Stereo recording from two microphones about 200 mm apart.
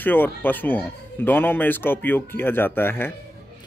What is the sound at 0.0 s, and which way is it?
A man's voice, 10° left (ahead or behind).